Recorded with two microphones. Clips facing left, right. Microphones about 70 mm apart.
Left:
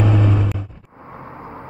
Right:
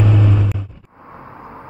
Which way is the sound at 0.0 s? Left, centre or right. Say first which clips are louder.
Right 1 dB; left.